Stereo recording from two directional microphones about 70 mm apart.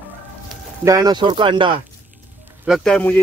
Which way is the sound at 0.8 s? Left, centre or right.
Right.